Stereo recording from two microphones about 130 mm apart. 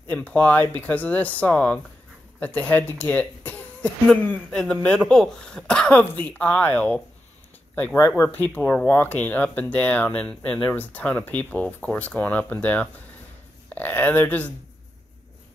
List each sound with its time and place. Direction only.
0.1 s speech: 10° left (ahead or behind)